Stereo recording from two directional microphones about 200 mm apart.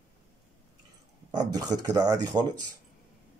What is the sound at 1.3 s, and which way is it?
Speech, 20° right (ahead or behind).